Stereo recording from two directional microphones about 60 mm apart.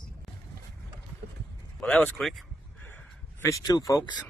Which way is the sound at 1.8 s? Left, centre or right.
Centre.